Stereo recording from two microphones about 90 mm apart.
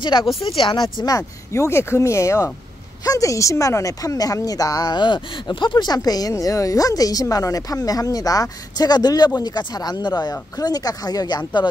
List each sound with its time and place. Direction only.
0.0 s speech: 60° left (ahead or behind)
1.0 s a woman's voice: 40° left (ahead or behind); by 5.9 s 55° left (ahead or behind)
5.9 s a woman's voice: 45° left (ahead or behind)